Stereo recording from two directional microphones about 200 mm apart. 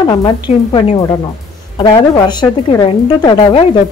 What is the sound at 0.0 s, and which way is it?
Speech, 20° left (ahead or behind).